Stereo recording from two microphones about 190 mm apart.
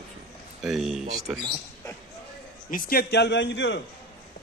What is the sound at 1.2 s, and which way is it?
Speech, 20° right (ahead or behind).